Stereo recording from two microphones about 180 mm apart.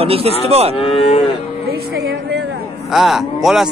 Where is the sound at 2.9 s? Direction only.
Centre (ahead or behind).